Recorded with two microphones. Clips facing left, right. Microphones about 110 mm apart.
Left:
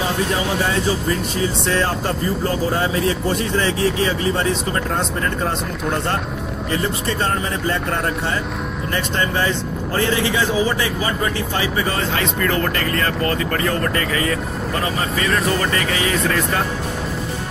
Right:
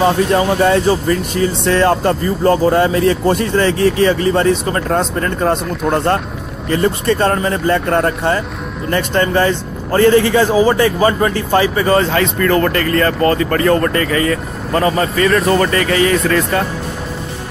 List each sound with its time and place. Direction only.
0.0 s speech: 65° right (ahead or behind)
5.5 s speech: 55° right (ahead or behind)
13.5 s speech: 55° right (ahead or behind)